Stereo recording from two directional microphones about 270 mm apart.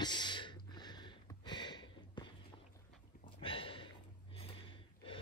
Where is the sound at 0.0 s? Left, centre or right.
Centre.